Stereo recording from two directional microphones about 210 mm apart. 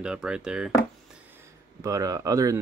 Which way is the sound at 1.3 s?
15° right (ahead or behind).